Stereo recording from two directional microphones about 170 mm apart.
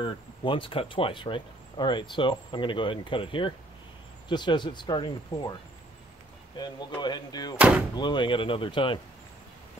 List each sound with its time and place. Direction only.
0.0 s speech: 30° left (ahead or behind)
6.6 s speech: 25° left (ahead or behind)
7.5 s speech: 5° right (ahead or behind)
7.9 s speech: 25° left (ahead or behind)